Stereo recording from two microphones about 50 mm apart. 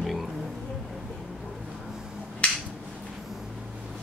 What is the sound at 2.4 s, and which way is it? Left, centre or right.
Finger snapping, left.